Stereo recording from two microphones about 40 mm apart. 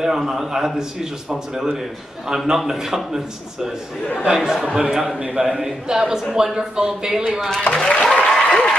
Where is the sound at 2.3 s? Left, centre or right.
Centre.